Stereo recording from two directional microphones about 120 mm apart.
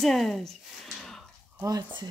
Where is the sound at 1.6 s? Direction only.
30° right (ahead or behind).